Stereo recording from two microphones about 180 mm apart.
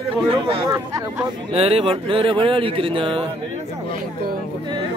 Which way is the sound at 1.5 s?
35° right (ahead or behind).